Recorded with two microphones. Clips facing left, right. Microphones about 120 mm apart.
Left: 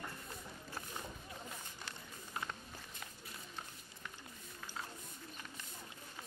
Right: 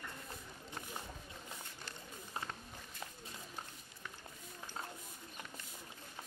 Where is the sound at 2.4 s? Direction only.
30° right (ahead or behind).